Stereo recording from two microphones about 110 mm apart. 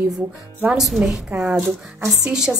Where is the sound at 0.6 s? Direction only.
5° right (ahead or behind).